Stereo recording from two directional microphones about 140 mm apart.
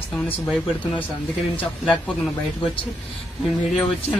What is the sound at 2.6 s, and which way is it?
Speech, 40° left (ahead or behind).